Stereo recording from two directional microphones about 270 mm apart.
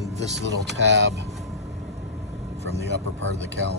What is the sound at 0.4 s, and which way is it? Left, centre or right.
Speech, right.